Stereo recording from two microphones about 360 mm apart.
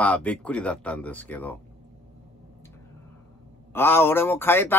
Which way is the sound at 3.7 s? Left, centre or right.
Centre.